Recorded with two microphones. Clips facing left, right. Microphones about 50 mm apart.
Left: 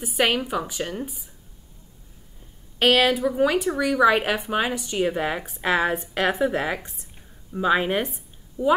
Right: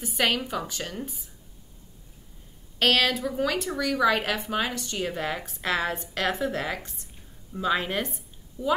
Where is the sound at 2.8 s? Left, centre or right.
Centre.